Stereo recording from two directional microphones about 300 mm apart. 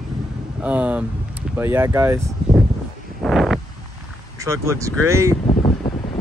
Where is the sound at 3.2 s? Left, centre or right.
Centre.